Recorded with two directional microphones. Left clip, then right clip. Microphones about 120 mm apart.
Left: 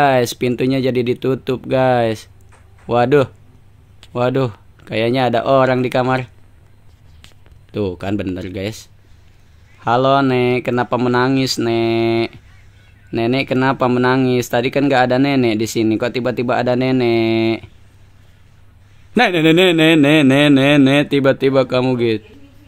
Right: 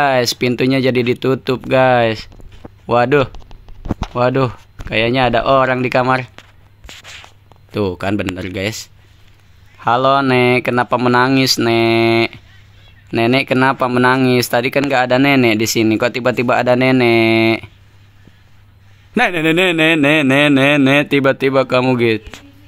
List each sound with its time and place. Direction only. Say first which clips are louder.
0.0 s speech: even; centre (ahead or behind)
4.9 s speech: right 2 dB; 15° left (ahead or behind)
7.7 s speech: right 3 dB; centre (ahead or behind)
19.1 s speech: left 1 dB; centre (ahead or behind)